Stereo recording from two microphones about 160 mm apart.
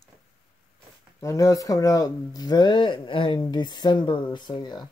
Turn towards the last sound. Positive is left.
turn(degrees=25)  # may be behind; listen again after turning